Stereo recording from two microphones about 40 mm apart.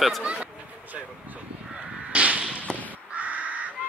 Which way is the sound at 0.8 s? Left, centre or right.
Right.